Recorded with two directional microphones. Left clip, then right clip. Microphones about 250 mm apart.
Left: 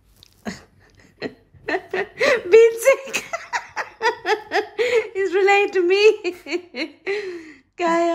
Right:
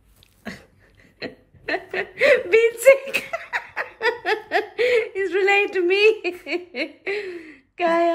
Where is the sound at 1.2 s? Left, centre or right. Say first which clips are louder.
Left 2 dB; centre.